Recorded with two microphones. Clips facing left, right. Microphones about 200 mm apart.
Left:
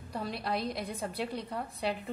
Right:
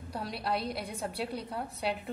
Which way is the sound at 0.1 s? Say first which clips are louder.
Even; 5° right (ahead or behind).